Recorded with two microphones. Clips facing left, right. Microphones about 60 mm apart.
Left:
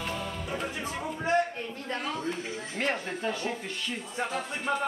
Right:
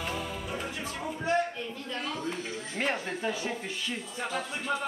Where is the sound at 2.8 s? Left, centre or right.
Centre.